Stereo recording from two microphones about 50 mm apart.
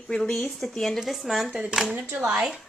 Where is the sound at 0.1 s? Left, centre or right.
Centre.